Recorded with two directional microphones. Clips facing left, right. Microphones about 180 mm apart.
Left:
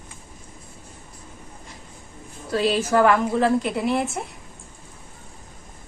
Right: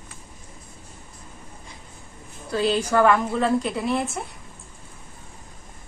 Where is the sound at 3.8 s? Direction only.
25° left (ahead or behind).